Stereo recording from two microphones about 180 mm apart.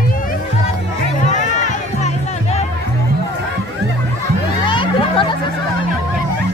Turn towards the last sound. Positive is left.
turn(degrees=25)  # may be behind; listen again after turning